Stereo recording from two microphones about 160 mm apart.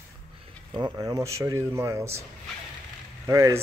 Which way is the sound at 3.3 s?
20° right (ahead or behind).